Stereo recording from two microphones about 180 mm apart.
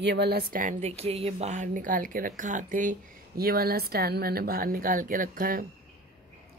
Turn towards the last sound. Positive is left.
turn(degrees=-50)  # may be behind; listen again after turning